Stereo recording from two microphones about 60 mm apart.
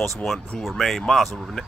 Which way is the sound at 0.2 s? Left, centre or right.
Centre.